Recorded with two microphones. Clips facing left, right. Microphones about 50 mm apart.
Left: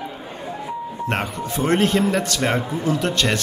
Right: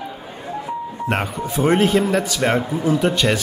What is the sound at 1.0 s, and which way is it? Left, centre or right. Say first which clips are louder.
Speech: right 2 dB; centre.